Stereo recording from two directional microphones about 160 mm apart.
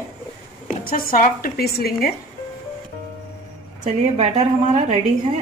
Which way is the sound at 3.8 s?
45° right (ahead or behind).